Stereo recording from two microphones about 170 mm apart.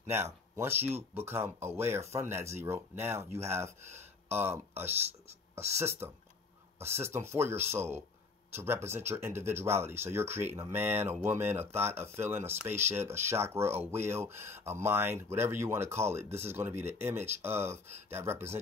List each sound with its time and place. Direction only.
0.1 s speech: 15° right (ahead or behind)